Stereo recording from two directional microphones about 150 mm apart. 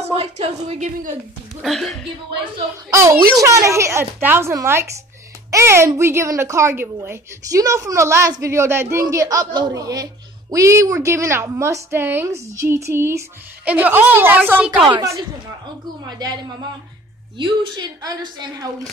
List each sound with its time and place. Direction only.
0.0 s a woman's voice: 45° right (ahead or behind)
1.6 s speech: centre (ahead or behind)
2.9 s a woman's voice: 20° right (ahead or behind)
14.9 s a woman's voice: 25° right (ahead or behind)
17.4 s a woman's voice: 30° right (ahead or behind)